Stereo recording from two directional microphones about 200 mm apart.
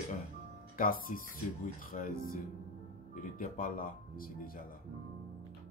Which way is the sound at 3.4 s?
40° left (ahead or behind).